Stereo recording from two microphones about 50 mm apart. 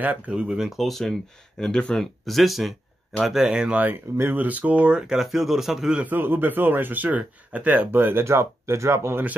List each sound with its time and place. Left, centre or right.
0.3 s speech: right
0.7 s speech: centre
1.6 s speech: centre
2.0 s speech: centre
3.9 s speech: right
4.4 s speech: right
5.1 s a man's voice: centre
6.0 s speech: right
7.9 s speech: right
8.3 s speech: right